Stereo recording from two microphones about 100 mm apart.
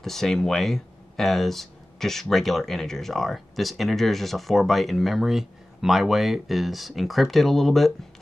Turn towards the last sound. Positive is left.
turn(degrees=0)  # may be behind; listen again after turning